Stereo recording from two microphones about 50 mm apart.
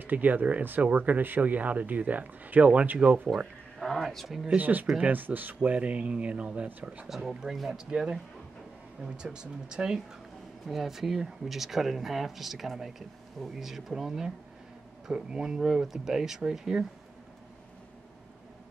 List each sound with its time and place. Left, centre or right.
0.0 s speech: right
3.8 s speech: centre
4.6 s speech: right
7.1 s speech: centre
7.8 s speech: centre
10.7 s speech: centre